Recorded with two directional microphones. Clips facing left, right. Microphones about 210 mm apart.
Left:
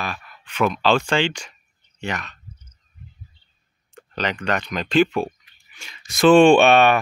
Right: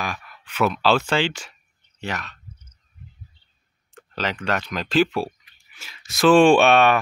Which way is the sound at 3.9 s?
5° right (ahead or behind).